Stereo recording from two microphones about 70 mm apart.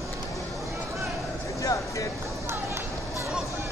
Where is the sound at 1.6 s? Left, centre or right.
Left.